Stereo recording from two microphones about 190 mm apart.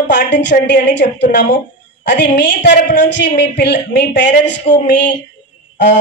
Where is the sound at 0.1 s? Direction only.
65° left (ahead or behind).